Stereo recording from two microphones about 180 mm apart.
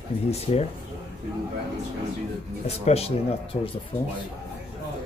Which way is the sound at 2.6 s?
35° left (ahead or behind).